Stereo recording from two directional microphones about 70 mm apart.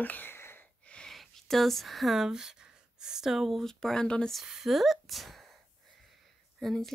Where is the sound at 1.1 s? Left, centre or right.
Centre.